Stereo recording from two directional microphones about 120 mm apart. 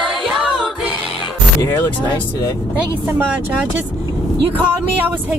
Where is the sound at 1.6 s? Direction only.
25° left (ahead or behind).